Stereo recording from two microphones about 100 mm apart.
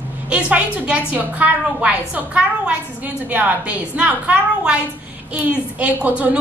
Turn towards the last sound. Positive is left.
turn(degrees=-15)  # may be behind; listen again after turning